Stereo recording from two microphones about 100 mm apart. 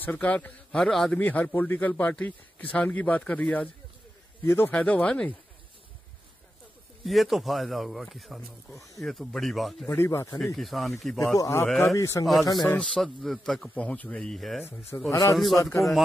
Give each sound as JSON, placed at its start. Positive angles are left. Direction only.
{"t": 0.0, "sound": "a man's voice", "side_deg": 15}
{"t": 4.5, "sound": "speech", "side_deg": 25}
{"t": 4.7, "sound": "a man's voice", "side_deg": 15}
{"t": 7.1, "sound": "speech", "side_deg": 0}
{"t": 9.8, "sound": "speech", "side_deg": 25}
{"t": 10.4, "sound": "speech", "side_deg": 0}
{"t": 11.3, "sound": "a man's voice", "side_deg": 35}
{"t": 12.6, "sound": "speech", "side_deg": 10}
{"t": 13.7, "sound": "a man's voice", "side_deg": 15}
{"t": 15.0, "sound": "a man's voice", "side_deg": 30}
{"t": 15.3, "sound": "speech", "side_deg": 0}